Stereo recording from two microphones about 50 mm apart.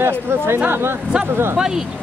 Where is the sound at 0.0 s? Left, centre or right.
Right.